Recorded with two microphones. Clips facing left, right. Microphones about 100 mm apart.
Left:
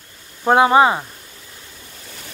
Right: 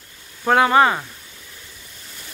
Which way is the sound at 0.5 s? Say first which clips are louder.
Left 2 dB; 20° left (ahead or behind).